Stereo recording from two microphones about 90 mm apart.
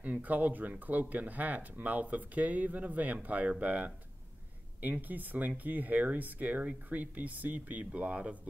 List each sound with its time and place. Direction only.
0.0 s speech: 20° right (ahead or behind)